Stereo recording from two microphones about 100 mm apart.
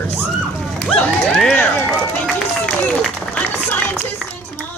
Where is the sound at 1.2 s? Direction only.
Centre (ahead or behind).